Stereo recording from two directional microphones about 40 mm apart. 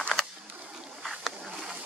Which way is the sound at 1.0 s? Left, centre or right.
Centre.